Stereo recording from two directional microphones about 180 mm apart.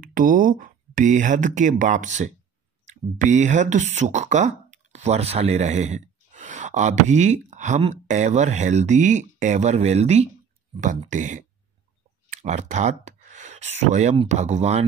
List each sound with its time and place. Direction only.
0.0 s speech: 50° right (ahead or behind)